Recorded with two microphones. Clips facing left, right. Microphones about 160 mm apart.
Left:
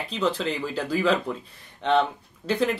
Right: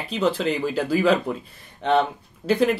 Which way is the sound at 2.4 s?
10° right (ahead or behind).